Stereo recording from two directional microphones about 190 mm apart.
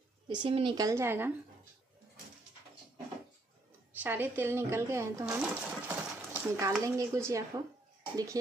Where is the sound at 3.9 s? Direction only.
10° right (ahead or behind).